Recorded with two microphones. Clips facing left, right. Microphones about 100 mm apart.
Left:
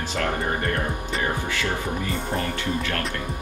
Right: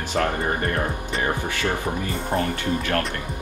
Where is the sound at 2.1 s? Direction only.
30° right (ahead or behind).